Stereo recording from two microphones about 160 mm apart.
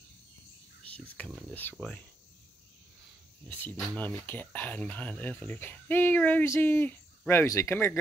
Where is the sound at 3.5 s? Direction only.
10° left (ahead or behind).